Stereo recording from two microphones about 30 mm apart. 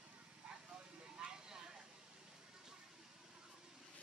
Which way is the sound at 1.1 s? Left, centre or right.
Right.